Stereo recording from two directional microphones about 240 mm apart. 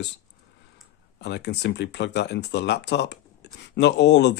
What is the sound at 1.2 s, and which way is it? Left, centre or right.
Speech, left.